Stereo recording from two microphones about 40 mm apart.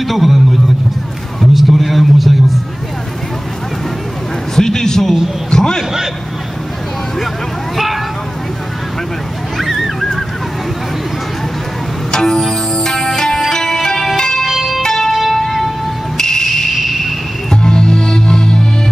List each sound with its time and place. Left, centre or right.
0.0 s speech: centre
1.4 s a sound: centre
4.6 s a sound: centre
7.7 s hubbub: centre
9.6 s music: centre
12.1 s music: centre
14.4 s music: centre
14.8 s music: centre
15.0 s music: centre
16.2 s fire alarm: centre
17.5 s music: centre